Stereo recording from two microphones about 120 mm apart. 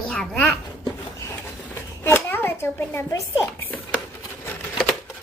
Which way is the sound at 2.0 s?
20° left (ahead or behind).